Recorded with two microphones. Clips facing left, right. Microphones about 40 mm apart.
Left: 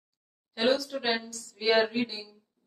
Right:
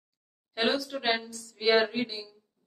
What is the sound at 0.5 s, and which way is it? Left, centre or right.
Speech, centre.